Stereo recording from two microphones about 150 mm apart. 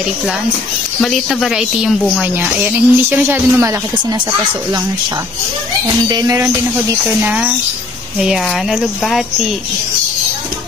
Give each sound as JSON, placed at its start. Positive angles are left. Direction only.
{"t": 1.0, "sound": "speech", "side_deg": 0}
{"t": 6.0, "sound": "speech", "side_deg": -25}